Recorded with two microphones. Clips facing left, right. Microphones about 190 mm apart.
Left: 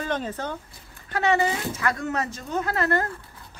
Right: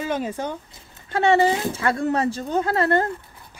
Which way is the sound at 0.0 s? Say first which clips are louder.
Right 3 dB; 10° right (ahead or behind).